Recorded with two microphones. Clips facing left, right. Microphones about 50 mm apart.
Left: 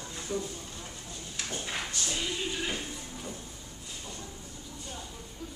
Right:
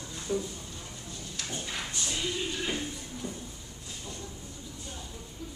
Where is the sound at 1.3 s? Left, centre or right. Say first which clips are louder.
Left 1 dB; centre.